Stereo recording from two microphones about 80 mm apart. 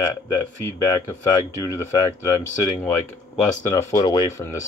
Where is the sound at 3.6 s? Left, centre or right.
Left.